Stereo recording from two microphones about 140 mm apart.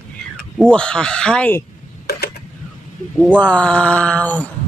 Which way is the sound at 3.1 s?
10° left (ahead or behind).